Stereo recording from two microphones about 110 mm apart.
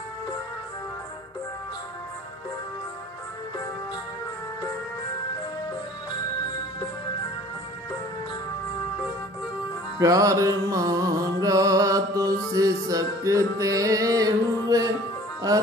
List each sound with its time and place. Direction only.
9.9 s music: 30° right (ahead or behind)